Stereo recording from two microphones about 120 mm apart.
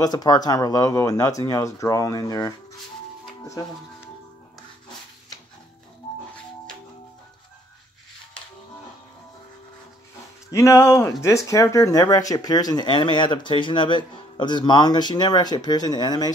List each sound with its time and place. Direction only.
0.0 s speech: 35° left (ahead or behind)
10.5 s speech: 25° left (ahead or behind)